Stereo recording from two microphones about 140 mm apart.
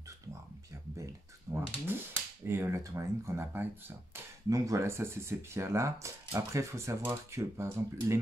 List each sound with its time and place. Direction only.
1.5 s speech: 15° right (ahead or behind)